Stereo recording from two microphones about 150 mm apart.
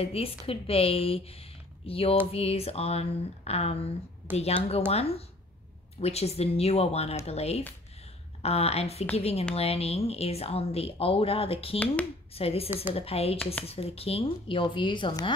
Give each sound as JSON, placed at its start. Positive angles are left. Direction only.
{"t": 0.0, "sound": "speech", "side_deg": 40}
{"t": 4.3, "sound": "a woman's voice", "side_deg": -15}
{"t": 4.6, "sound": "speech", "side_deg": 40}
{"t": 12.6, "sound": "a woman's voice", "side_deg": -15}
{"t": 12.9, "sound": "speech", "side_deg": 40}